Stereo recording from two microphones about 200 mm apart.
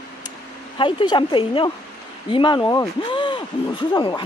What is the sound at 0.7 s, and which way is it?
Speech, 25° left (ahead or behind).